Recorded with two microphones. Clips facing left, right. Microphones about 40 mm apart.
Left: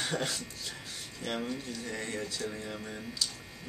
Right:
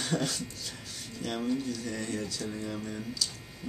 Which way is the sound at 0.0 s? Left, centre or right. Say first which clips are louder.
Right 2 dB; centre.